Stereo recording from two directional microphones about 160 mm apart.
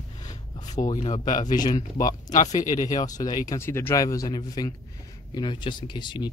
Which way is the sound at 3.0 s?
25° left (ahead or behind).